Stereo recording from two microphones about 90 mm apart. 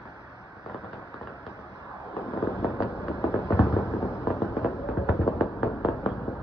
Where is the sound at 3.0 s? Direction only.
10° right (ahead or behind).